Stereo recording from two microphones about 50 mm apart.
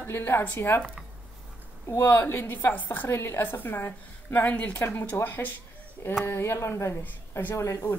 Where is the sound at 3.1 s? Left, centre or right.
Left.